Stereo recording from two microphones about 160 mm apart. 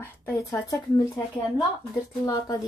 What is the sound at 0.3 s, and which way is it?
Speech, 20° left (ahead or behind).